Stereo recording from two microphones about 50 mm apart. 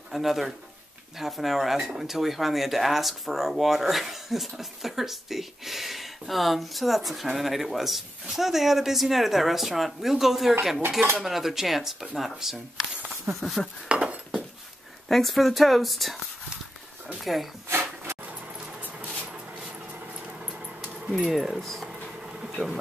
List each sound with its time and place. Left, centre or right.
0.1 s speech: centre
13.8 s a sound: right
15.0 s speech: centre
17.2 s speech: centre
17.6 s a sound: right
18.8 s a sound: right
21.1 s speech: centre
21.5 s speech: centre
21.8 s bee: centre